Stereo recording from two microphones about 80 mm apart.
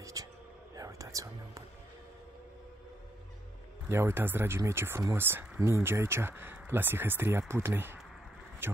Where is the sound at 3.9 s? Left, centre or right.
Right.